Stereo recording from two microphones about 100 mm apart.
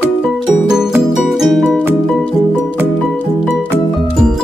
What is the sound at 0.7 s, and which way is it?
Music, 5° right (ahead or behind).